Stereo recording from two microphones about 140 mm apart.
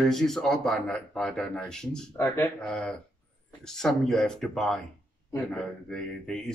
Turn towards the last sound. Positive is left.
turn(degrees=5)  # may be behind; listen again after turning